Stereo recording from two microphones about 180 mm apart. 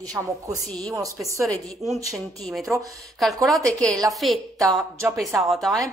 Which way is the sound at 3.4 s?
5° left (ahead or behind).